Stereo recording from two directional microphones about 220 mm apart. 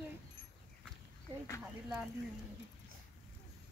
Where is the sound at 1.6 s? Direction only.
5° right (ahead or behind).